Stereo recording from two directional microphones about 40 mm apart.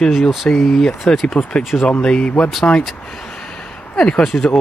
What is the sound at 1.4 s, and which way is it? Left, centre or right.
Speech, left.